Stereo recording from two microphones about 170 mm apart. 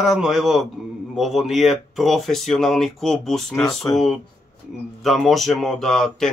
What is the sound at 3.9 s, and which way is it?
Speech, 20° left (ahead or behind).